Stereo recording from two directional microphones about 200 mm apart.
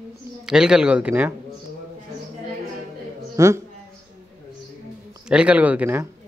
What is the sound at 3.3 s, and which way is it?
Speech, 15° right (ahead or behind).